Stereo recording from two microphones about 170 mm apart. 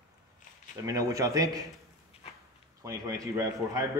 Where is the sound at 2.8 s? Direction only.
20° right (ahead or behind).